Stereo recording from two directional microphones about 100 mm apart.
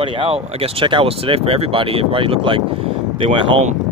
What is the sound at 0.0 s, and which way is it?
Speech, 60° right (ahead or behind).